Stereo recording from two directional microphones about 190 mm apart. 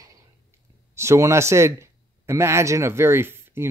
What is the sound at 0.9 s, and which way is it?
Speech, 15° right (ahead or behind).